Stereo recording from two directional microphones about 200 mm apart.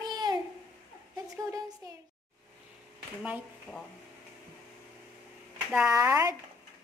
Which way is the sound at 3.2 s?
5° right (ahead or behind).